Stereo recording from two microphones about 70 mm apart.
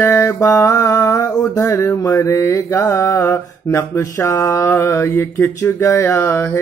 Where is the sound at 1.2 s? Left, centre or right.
Left.